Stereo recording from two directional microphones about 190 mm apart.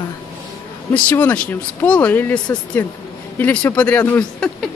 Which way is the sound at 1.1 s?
10° left (ahead or behind).